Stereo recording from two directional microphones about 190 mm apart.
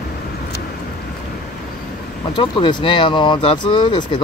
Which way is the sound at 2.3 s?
25° left (ahead or behind).